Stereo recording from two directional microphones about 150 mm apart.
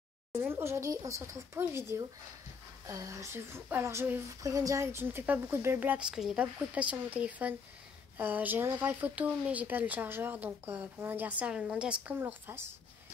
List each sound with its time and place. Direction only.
0.3 s a woman's voice: 15° right (ahead or behind)